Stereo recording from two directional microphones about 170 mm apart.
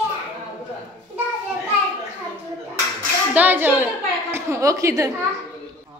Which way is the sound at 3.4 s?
10° right (ahead or behind).